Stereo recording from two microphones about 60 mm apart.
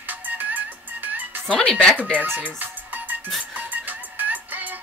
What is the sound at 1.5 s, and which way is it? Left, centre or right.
Speech, centre.